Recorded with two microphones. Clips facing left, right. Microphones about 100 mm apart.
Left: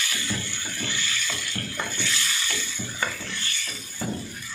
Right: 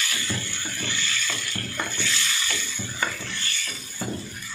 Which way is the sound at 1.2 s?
5° left (ahead or behind).